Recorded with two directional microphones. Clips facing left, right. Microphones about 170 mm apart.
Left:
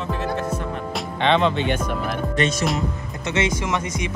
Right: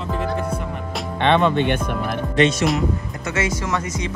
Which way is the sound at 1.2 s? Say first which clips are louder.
Right 2 dB; 50° right (ahead or behind).